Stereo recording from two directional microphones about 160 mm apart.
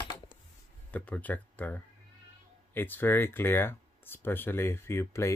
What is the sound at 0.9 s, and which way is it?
Speech, 10° left (ahead or behind).